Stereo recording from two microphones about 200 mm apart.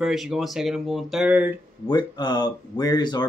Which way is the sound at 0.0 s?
Centre (ahead or behind).